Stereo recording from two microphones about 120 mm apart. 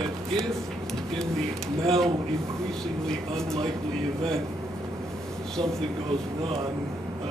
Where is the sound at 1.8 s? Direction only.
5° left (ahead or behind).